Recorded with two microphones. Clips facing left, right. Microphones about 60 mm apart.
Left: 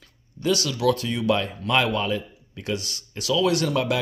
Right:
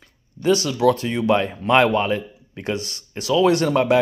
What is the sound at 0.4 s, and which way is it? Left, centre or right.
Speech, right.